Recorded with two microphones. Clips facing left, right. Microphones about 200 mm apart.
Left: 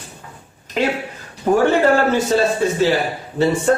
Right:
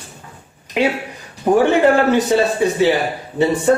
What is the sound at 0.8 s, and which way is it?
A man's voice, 15° right (ahead or behind).